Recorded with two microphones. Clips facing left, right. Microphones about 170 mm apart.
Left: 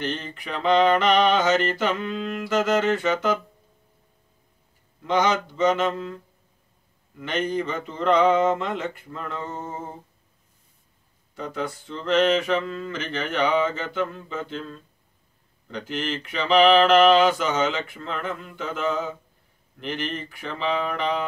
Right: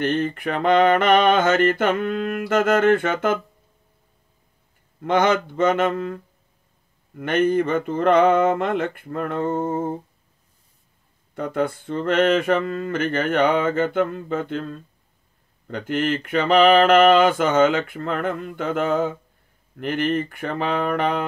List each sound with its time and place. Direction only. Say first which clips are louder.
0.0 s mantra: right 9 dB; 55° right (ahead or behind)
5.0 s mantra: right 3 dB; 55° right (ahead or behind)
11.3 s mantra: right 7 dB; 55° right (ahead or behind)